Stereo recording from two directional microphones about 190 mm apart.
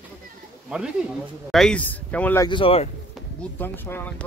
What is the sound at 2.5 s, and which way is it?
Speech, 30° left (ahead or behind).